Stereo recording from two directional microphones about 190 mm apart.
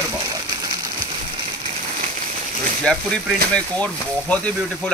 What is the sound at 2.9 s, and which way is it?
Speech, 5° left (ahead or behind).